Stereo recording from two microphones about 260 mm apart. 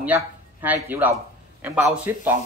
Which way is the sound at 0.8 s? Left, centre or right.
Centre.